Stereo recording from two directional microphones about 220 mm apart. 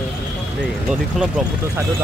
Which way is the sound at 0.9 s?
5° right (ahead or behind).